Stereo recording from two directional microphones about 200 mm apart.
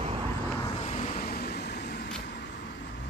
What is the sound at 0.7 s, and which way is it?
Vehicle, 30° left (ahead or behind).